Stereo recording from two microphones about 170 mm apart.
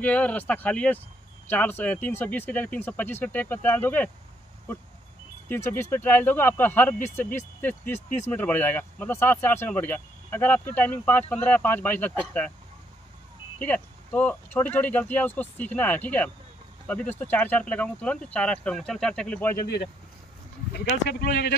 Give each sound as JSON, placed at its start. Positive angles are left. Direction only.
{"t": 0.0, "sound": "speech", "side_deg": 10}
{"t": 5.5, "sound": "speech", "side_deg": 15}
{"t": 13.6, "sound": "speech", "side_deg": 10}
{"t": 20.7, "sound": "speech", "side_deg": 70}